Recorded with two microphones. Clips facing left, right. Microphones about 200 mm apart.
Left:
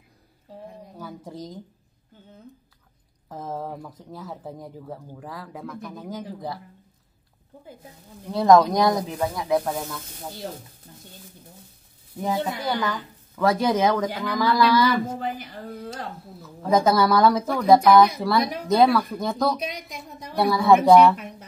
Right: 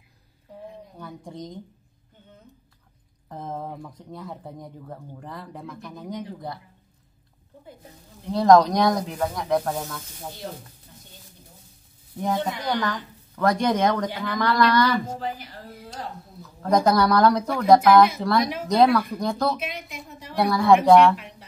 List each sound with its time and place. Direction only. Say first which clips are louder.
0.9 s a sound: left 2 dB; 5° left (ahead or behind)
3.3 s speech: left 1 dB; 5° left (ahead or behind)
8.3 s speech: even; centre (ahead or behind)
12.2 s speech: even; 5° left (ahead or behind)
15.1 s speech: left 2 dB; 55° left (ahead or behind)
16.4 s speech: even; centre (ahead or behind)
19.7 s a sound: even; 40° left (ahead or behind)
20.3 s speech: even; centre (ahead or behind)